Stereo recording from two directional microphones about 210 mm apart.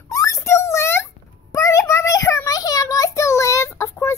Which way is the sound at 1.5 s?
15° left (ahead or behind).